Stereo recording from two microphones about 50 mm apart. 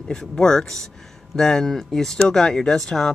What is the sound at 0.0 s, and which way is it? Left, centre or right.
Speech, centre.